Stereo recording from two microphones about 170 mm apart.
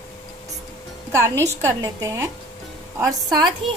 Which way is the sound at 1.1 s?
15° right (ahead or behind).